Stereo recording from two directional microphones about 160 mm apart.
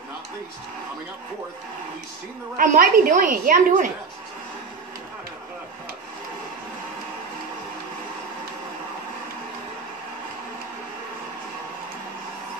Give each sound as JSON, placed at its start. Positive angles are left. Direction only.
{"t": 2.5, "sound": "a woman's voice", "side_deg": -60}